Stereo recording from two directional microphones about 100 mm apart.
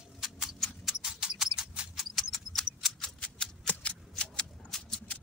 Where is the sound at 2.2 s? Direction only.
5° left (ahead or behind).